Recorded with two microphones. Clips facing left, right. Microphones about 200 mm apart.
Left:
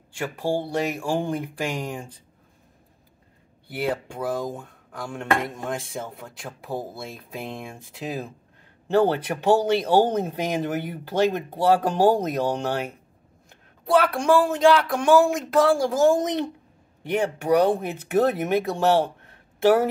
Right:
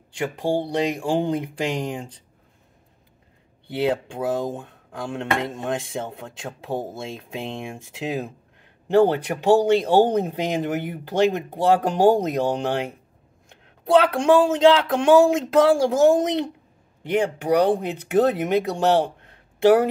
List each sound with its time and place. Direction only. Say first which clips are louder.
0.2 s speech: right 2 dB; 20° right (ahead or behind)
3.6 s speech: right 4 dB; 25° right (ahead or behind)